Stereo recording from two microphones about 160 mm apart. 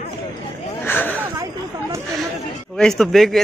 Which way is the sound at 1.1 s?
15° right (ahead or behind).